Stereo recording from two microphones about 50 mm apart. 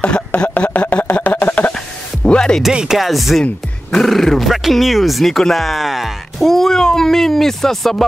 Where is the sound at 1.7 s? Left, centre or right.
Centre.